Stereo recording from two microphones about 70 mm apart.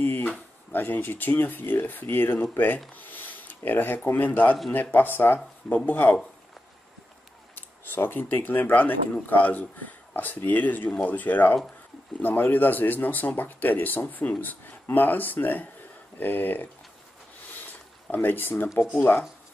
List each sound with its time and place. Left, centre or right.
0.0 s a sound: left
0.7 s speech: left
7.5 s speech: left
18.1 s speech: left